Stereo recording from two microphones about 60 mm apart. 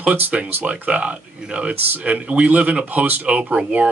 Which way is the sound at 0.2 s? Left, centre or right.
Right.